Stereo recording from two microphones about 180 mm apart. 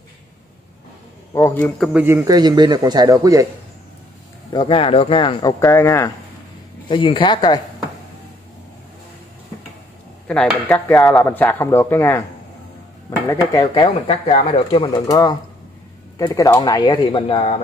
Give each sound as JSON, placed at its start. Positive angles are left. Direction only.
{"t": 1.3, "sound": "speech", "side_deg": 15}
{"t": 1.9, "sound": "speech", "side_deg": -5}
{"t": 2.2, "sound": "speech", "side_deg": -25}
{"t": 4.5, "sound": "speech", "side_deg": 30}
{"t": 5.6, "sound": "speech", "side_deg": 15}
{"t": 6.9, "sound": "speech", "side_deg": 30}
{"t": 10.2, "sound": "speech", "side_deg": 5}
{"t": 13.3, "sound": "speech", "side_deg": 20}
{"t": 14.7, "sound": "speech", "side_deg": 25}